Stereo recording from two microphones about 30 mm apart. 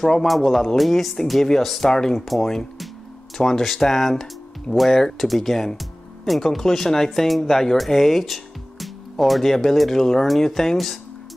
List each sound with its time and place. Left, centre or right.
0.0 s speech: centre
0.3 s speech: centre
1.8 s speech: centre
2.1 s speech: centre
3.3 s speech: centre
5.8 s music: centre
6.4 s speech: centre